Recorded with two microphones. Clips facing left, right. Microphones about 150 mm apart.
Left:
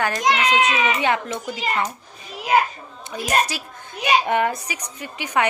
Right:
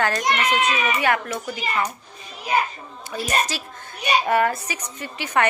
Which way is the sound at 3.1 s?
10° left (ahead or behind).